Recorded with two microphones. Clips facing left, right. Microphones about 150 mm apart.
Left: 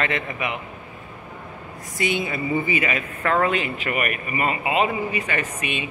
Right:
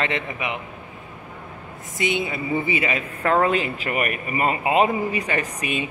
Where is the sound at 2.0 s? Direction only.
20° right (ahead or behind).